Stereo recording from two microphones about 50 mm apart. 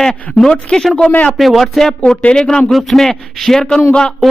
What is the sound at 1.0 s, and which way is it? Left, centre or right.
Speech, left.